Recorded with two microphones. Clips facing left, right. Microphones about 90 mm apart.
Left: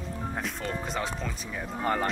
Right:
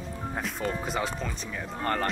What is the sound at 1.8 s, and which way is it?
Speech, 10° left (ahead or behind).